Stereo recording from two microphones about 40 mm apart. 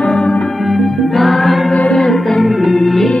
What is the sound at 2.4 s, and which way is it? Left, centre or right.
Music, centre.